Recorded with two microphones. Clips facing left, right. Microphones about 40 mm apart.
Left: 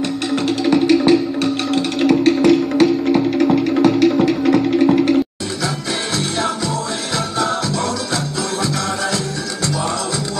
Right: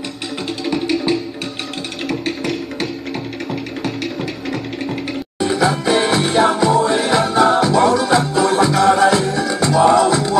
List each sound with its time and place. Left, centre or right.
0.7 s music: centre
5.6 s music: centre